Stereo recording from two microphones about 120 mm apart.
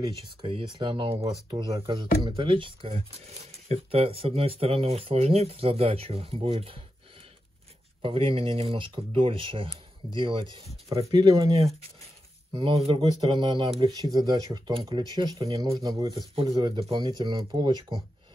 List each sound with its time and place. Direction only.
0.4 s speech: 45° right (ahead or behind)
8.0 s speech: 50° right (ahead or behind)
10.9 s speech: 30° right (ahead or behind)
12.7 s speech: 50° right (ahead or behind)
13.0 s speech: 35° right (ahead or behind)